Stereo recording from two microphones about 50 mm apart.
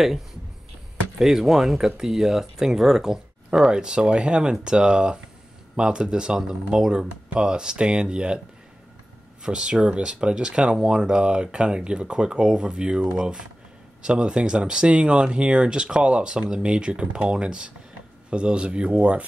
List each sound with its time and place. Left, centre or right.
0.0 s speech: centre
9.4 s speech: centre